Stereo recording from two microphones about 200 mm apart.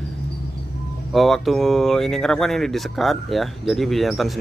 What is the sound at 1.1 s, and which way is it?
Speech, centre (ahead or behind).